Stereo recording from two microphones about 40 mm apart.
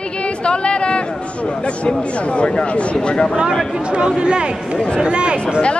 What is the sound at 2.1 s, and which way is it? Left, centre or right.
Speech, left.